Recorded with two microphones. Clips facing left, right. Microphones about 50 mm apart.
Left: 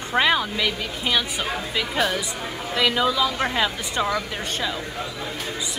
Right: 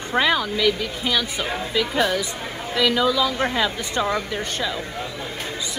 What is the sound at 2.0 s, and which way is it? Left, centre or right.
Speech, left.